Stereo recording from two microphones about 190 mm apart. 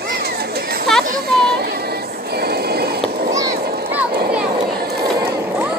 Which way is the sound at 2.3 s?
55° right (ahead or behind).